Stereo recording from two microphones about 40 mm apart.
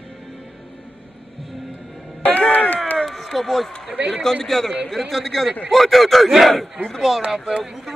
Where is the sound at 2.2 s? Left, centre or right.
Left.